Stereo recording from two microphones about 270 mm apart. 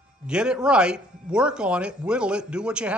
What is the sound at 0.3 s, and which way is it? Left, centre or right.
Speech, centre.